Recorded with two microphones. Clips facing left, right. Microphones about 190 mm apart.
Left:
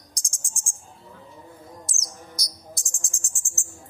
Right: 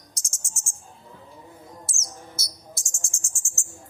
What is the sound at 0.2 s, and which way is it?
Cricket, 15° left (ahead or behind).